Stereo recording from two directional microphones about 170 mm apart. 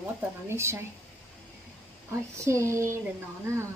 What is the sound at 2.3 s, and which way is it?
Speech, 15° right (ahead or behind).